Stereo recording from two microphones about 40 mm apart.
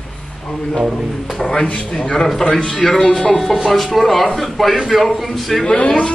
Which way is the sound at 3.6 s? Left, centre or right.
Centre.